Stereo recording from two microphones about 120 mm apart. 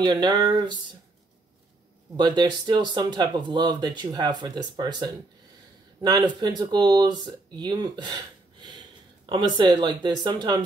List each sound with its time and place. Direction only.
0.0 s speech: 35° right (ahead or behind)
2.1 s speech: 35° right (ahead or behind)